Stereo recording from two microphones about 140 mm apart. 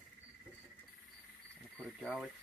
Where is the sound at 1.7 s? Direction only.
Centre (ahead or behind).